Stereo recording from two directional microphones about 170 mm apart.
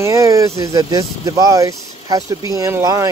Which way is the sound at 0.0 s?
20° right (ahead or behind).